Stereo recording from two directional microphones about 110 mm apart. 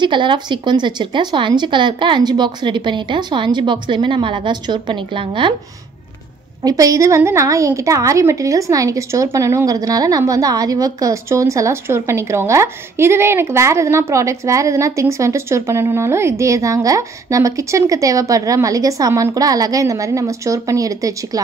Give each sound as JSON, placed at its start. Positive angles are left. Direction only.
{"t": 0.0, "sound": "speech", "side_deg": -45}
{"t": 6.6, "sound": "a woman's voice", "side_deg": -30}